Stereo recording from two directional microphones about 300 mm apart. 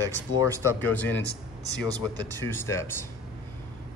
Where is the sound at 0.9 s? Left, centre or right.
Centre.